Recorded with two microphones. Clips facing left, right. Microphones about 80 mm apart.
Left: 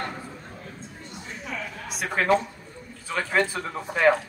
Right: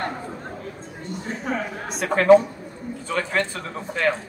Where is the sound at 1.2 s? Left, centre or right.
Right.